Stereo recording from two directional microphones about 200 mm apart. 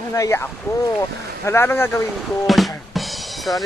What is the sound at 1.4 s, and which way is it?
Speech, 10° left (ahead or behind).